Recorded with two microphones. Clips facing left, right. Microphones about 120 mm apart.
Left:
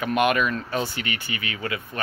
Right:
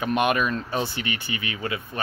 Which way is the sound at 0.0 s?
25° right (ahead or behind).